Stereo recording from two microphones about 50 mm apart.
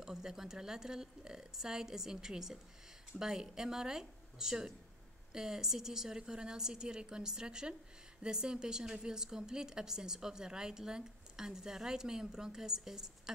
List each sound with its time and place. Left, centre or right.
0.0 s a woman's voice: centre